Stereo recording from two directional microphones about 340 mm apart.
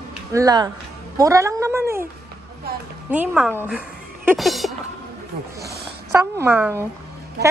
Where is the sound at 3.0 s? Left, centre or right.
Centre.